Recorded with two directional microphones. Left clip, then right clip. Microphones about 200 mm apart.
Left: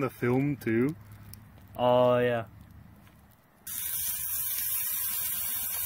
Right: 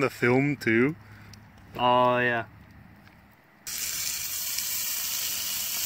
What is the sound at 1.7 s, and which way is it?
Speech, 45° left (ahead or behind).